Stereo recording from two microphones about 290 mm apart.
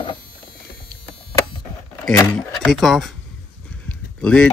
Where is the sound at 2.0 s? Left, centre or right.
Centre.